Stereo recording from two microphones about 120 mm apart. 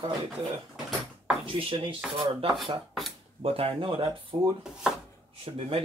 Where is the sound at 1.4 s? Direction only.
45° right (ahead or behind).